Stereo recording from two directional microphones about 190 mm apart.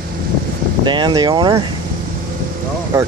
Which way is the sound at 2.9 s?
15° right (ahead or behind).